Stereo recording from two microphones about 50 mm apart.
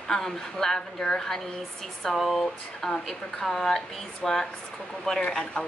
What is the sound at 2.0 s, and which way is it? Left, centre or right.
A woman's voice, centre.